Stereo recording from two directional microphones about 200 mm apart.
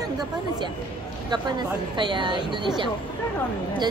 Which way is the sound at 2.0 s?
20° right (ahead or behind).